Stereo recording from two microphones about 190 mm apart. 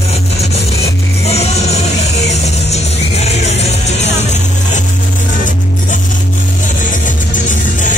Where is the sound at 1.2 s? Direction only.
35° left (ahead or behind).